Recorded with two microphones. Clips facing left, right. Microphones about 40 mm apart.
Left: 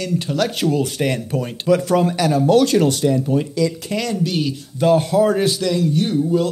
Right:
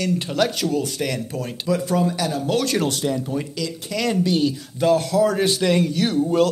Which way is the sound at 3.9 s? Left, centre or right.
Left.